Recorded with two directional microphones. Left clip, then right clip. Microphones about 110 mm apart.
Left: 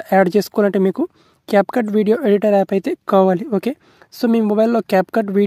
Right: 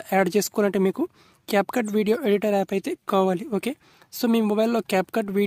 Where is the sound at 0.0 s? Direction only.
55° left (ahead or behind).